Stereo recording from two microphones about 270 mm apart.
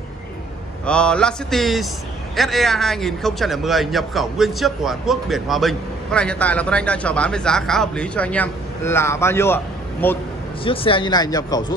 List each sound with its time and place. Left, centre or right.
0.8 s a man's voice: centre
10.6 s speech: centre